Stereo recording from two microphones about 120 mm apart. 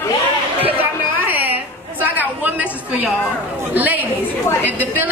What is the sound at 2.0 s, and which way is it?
A woman's voice, 15° right (ahead or behind).